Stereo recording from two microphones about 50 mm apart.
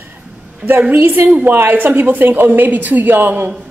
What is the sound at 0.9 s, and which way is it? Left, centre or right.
A woman's voice, right.